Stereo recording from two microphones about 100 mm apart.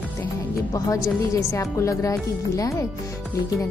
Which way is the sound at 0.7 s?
35° left (ahead or behind).